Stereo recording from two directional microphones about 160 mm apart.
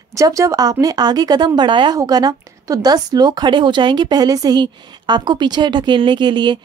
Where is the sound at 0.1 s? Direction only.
20° right (ahead or behind).